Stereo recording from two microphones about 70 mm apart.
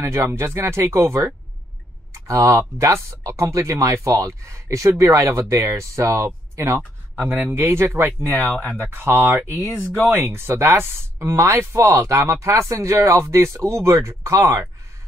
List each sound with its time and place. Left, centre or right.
0.0 s speech: right
7.2 s speech: right
7.5 s speech: right
11.3 s speech: right